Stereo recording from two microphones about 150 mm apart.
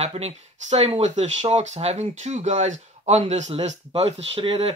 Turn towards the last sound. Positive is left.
turn(degrees=-40)  # may be behind; listen again after turning